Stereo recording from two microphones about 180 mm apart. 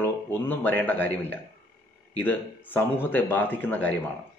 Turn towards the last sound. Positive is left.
turn(degrees=10)  # may be behind; listen again after turning